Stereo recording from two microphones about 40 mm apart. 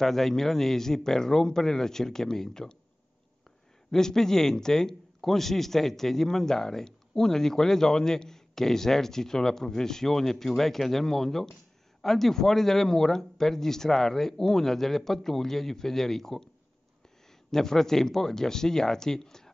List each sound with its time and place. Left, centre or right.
0.0 s a man's voice: centre
3.9 s a man's voice: centre
17.5 s a man's voice: centre